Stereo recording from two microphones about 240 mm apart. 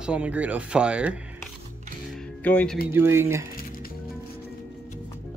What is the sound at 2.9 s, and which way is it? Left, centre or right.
Speech, centre.